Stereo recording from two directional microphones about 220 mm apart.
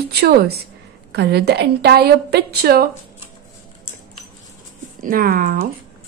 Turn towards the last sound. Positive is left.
turn(degrees=-40)  # may be behind; listen again after turning